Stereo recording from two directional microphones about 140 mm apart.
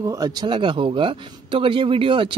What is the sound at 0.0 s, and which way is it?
Speech, 30° right (ahead or behind).